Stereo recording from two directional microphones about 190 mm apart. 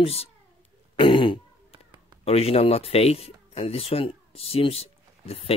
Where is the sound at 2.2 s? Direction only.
30° left (ahead or behind).